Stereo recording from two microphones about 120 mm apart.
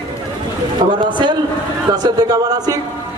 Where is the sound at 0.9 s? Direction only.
40° right (ahead or behind).